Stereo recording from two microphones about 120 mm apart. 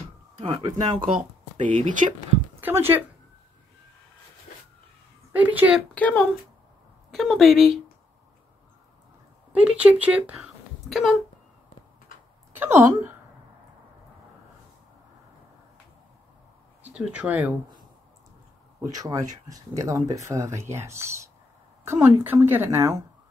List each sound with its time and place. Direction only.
0.4 s speech: 45° right (ahead or behind)
1.7 s speech: 90° right
2.6 s speech: 20° right (ahead or behind)
5.3 s speech: 15° right (ahead or behind)
5.9 s speech: 10° left (ahead or behind)
7.1 s a woman's voice: centre (ahead or behind)
9.5 s speech: 10° right (ahead or behind)
10.3 s a sound: centre (ahead or behind)
12.5 s a woman's voice: 20° right (ahead or behind)
16.8 s speech: 10° right (ahead or behind)
18.8 s speech: 30° right (ahead or behind)